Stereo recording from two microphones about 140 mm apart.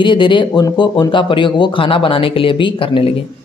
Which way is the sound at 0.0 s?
35° left (ahead or behind).